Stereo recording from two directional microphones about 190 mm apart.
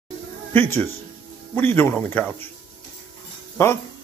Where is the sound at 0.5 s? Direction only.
10° left (ahead or behind).